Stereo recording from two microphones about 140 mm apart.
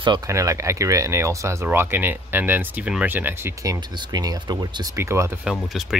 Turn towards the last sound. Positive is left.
turn(degrees=0)  # may be behind; listen again after turning